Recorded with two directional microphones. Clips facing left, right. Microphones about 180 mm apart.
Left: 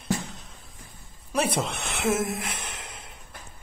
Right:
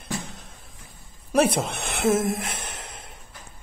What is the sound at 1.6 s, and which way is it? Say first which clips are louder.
Music: right 3 dB; 45° right (ahead or behind).